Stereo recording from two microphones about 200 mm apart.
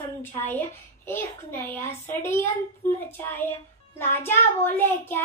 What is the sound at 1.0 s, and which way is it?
Child singing, 10° left (ahead or behind).